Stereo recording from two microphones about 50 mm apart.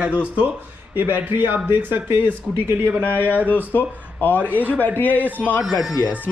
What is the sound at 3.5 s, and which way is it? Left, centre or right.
Speech, left.